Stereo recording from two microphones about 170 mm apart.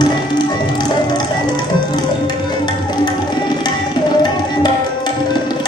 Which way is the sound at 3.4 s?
25° left (ahead or behind).